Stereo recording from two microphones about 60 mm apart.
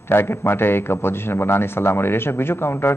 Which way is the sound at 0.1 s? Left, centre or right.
Left.